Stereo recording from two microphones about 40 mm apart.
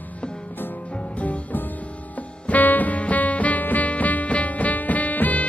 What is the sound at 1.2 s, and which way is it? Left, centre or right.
Music, left.